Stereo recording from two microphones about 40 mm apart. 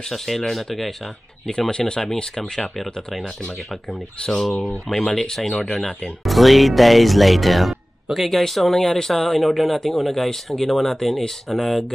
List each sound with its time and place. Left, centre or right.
0.1 s speech: centre
1.7 s speech: left
4.3 s speech: centre
6.2 s speech: centre